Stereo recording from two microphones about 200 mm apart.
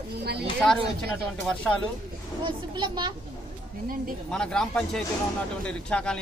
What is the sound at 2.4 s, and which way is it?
Speech, 20° right (ahead or behind).